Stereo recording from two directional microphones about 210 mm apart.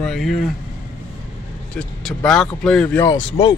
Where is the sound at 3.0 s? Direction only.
20° left (ahead or behind).